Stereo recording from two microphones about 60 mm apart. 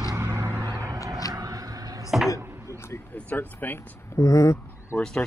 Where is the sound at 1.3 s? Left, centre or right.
Right.